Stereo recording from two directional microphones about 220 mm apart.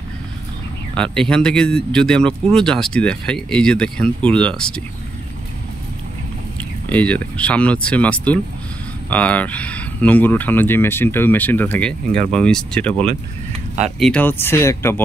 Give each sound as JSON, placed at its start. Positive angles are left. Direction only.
{"t": 0.9, "sound": "speech", "side_deg": 5}
{"t": 6.9, "sound": "speech", "side_deg": 5}
{"t": 12.9, "sound": "speech", "side_deg": -30}
{"t": 13.9, "sound": "speech", "side_deg": 5}